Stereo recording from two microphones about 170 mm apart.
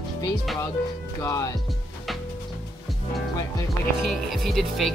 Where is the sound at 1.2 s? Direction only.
20° left (ahead or behind).